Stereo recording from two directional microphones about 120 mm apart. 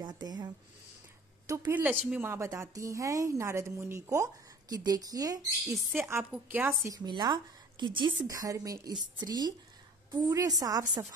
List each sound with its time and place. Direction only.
0.0 s a sound: 35° right (ahead or behind)
1.7 s a woman's voice: 15° right (ahead or behind); by 5.8 s 30° right (ahead or behind)
5.9 s a woman's voice: 20° right (ahead or behind)
6.9 s a woman's voice: 35° right (ahead or behind)
8.3 s speech: 30° right (ahead or behind)